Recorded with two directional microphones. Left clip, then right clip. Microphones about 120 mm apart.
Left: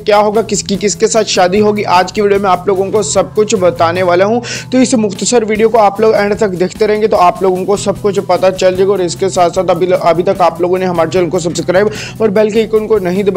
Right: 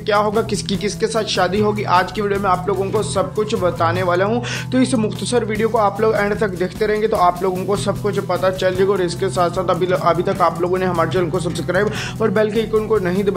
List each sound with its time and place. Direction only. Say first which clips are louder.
0.0 s speech: left 8 dB; 50° left (ahead or behind)
7.6 s speech: left 7 dB; 45° left (ahead or behind)
8.7 s speech: left 6 dB; 35° left (ahead or behind)
9.2 s speech: left 8 dB; 45° left (ahead or behind)
12.2 s speech: left 7 dB; 45° left (ahead or behind)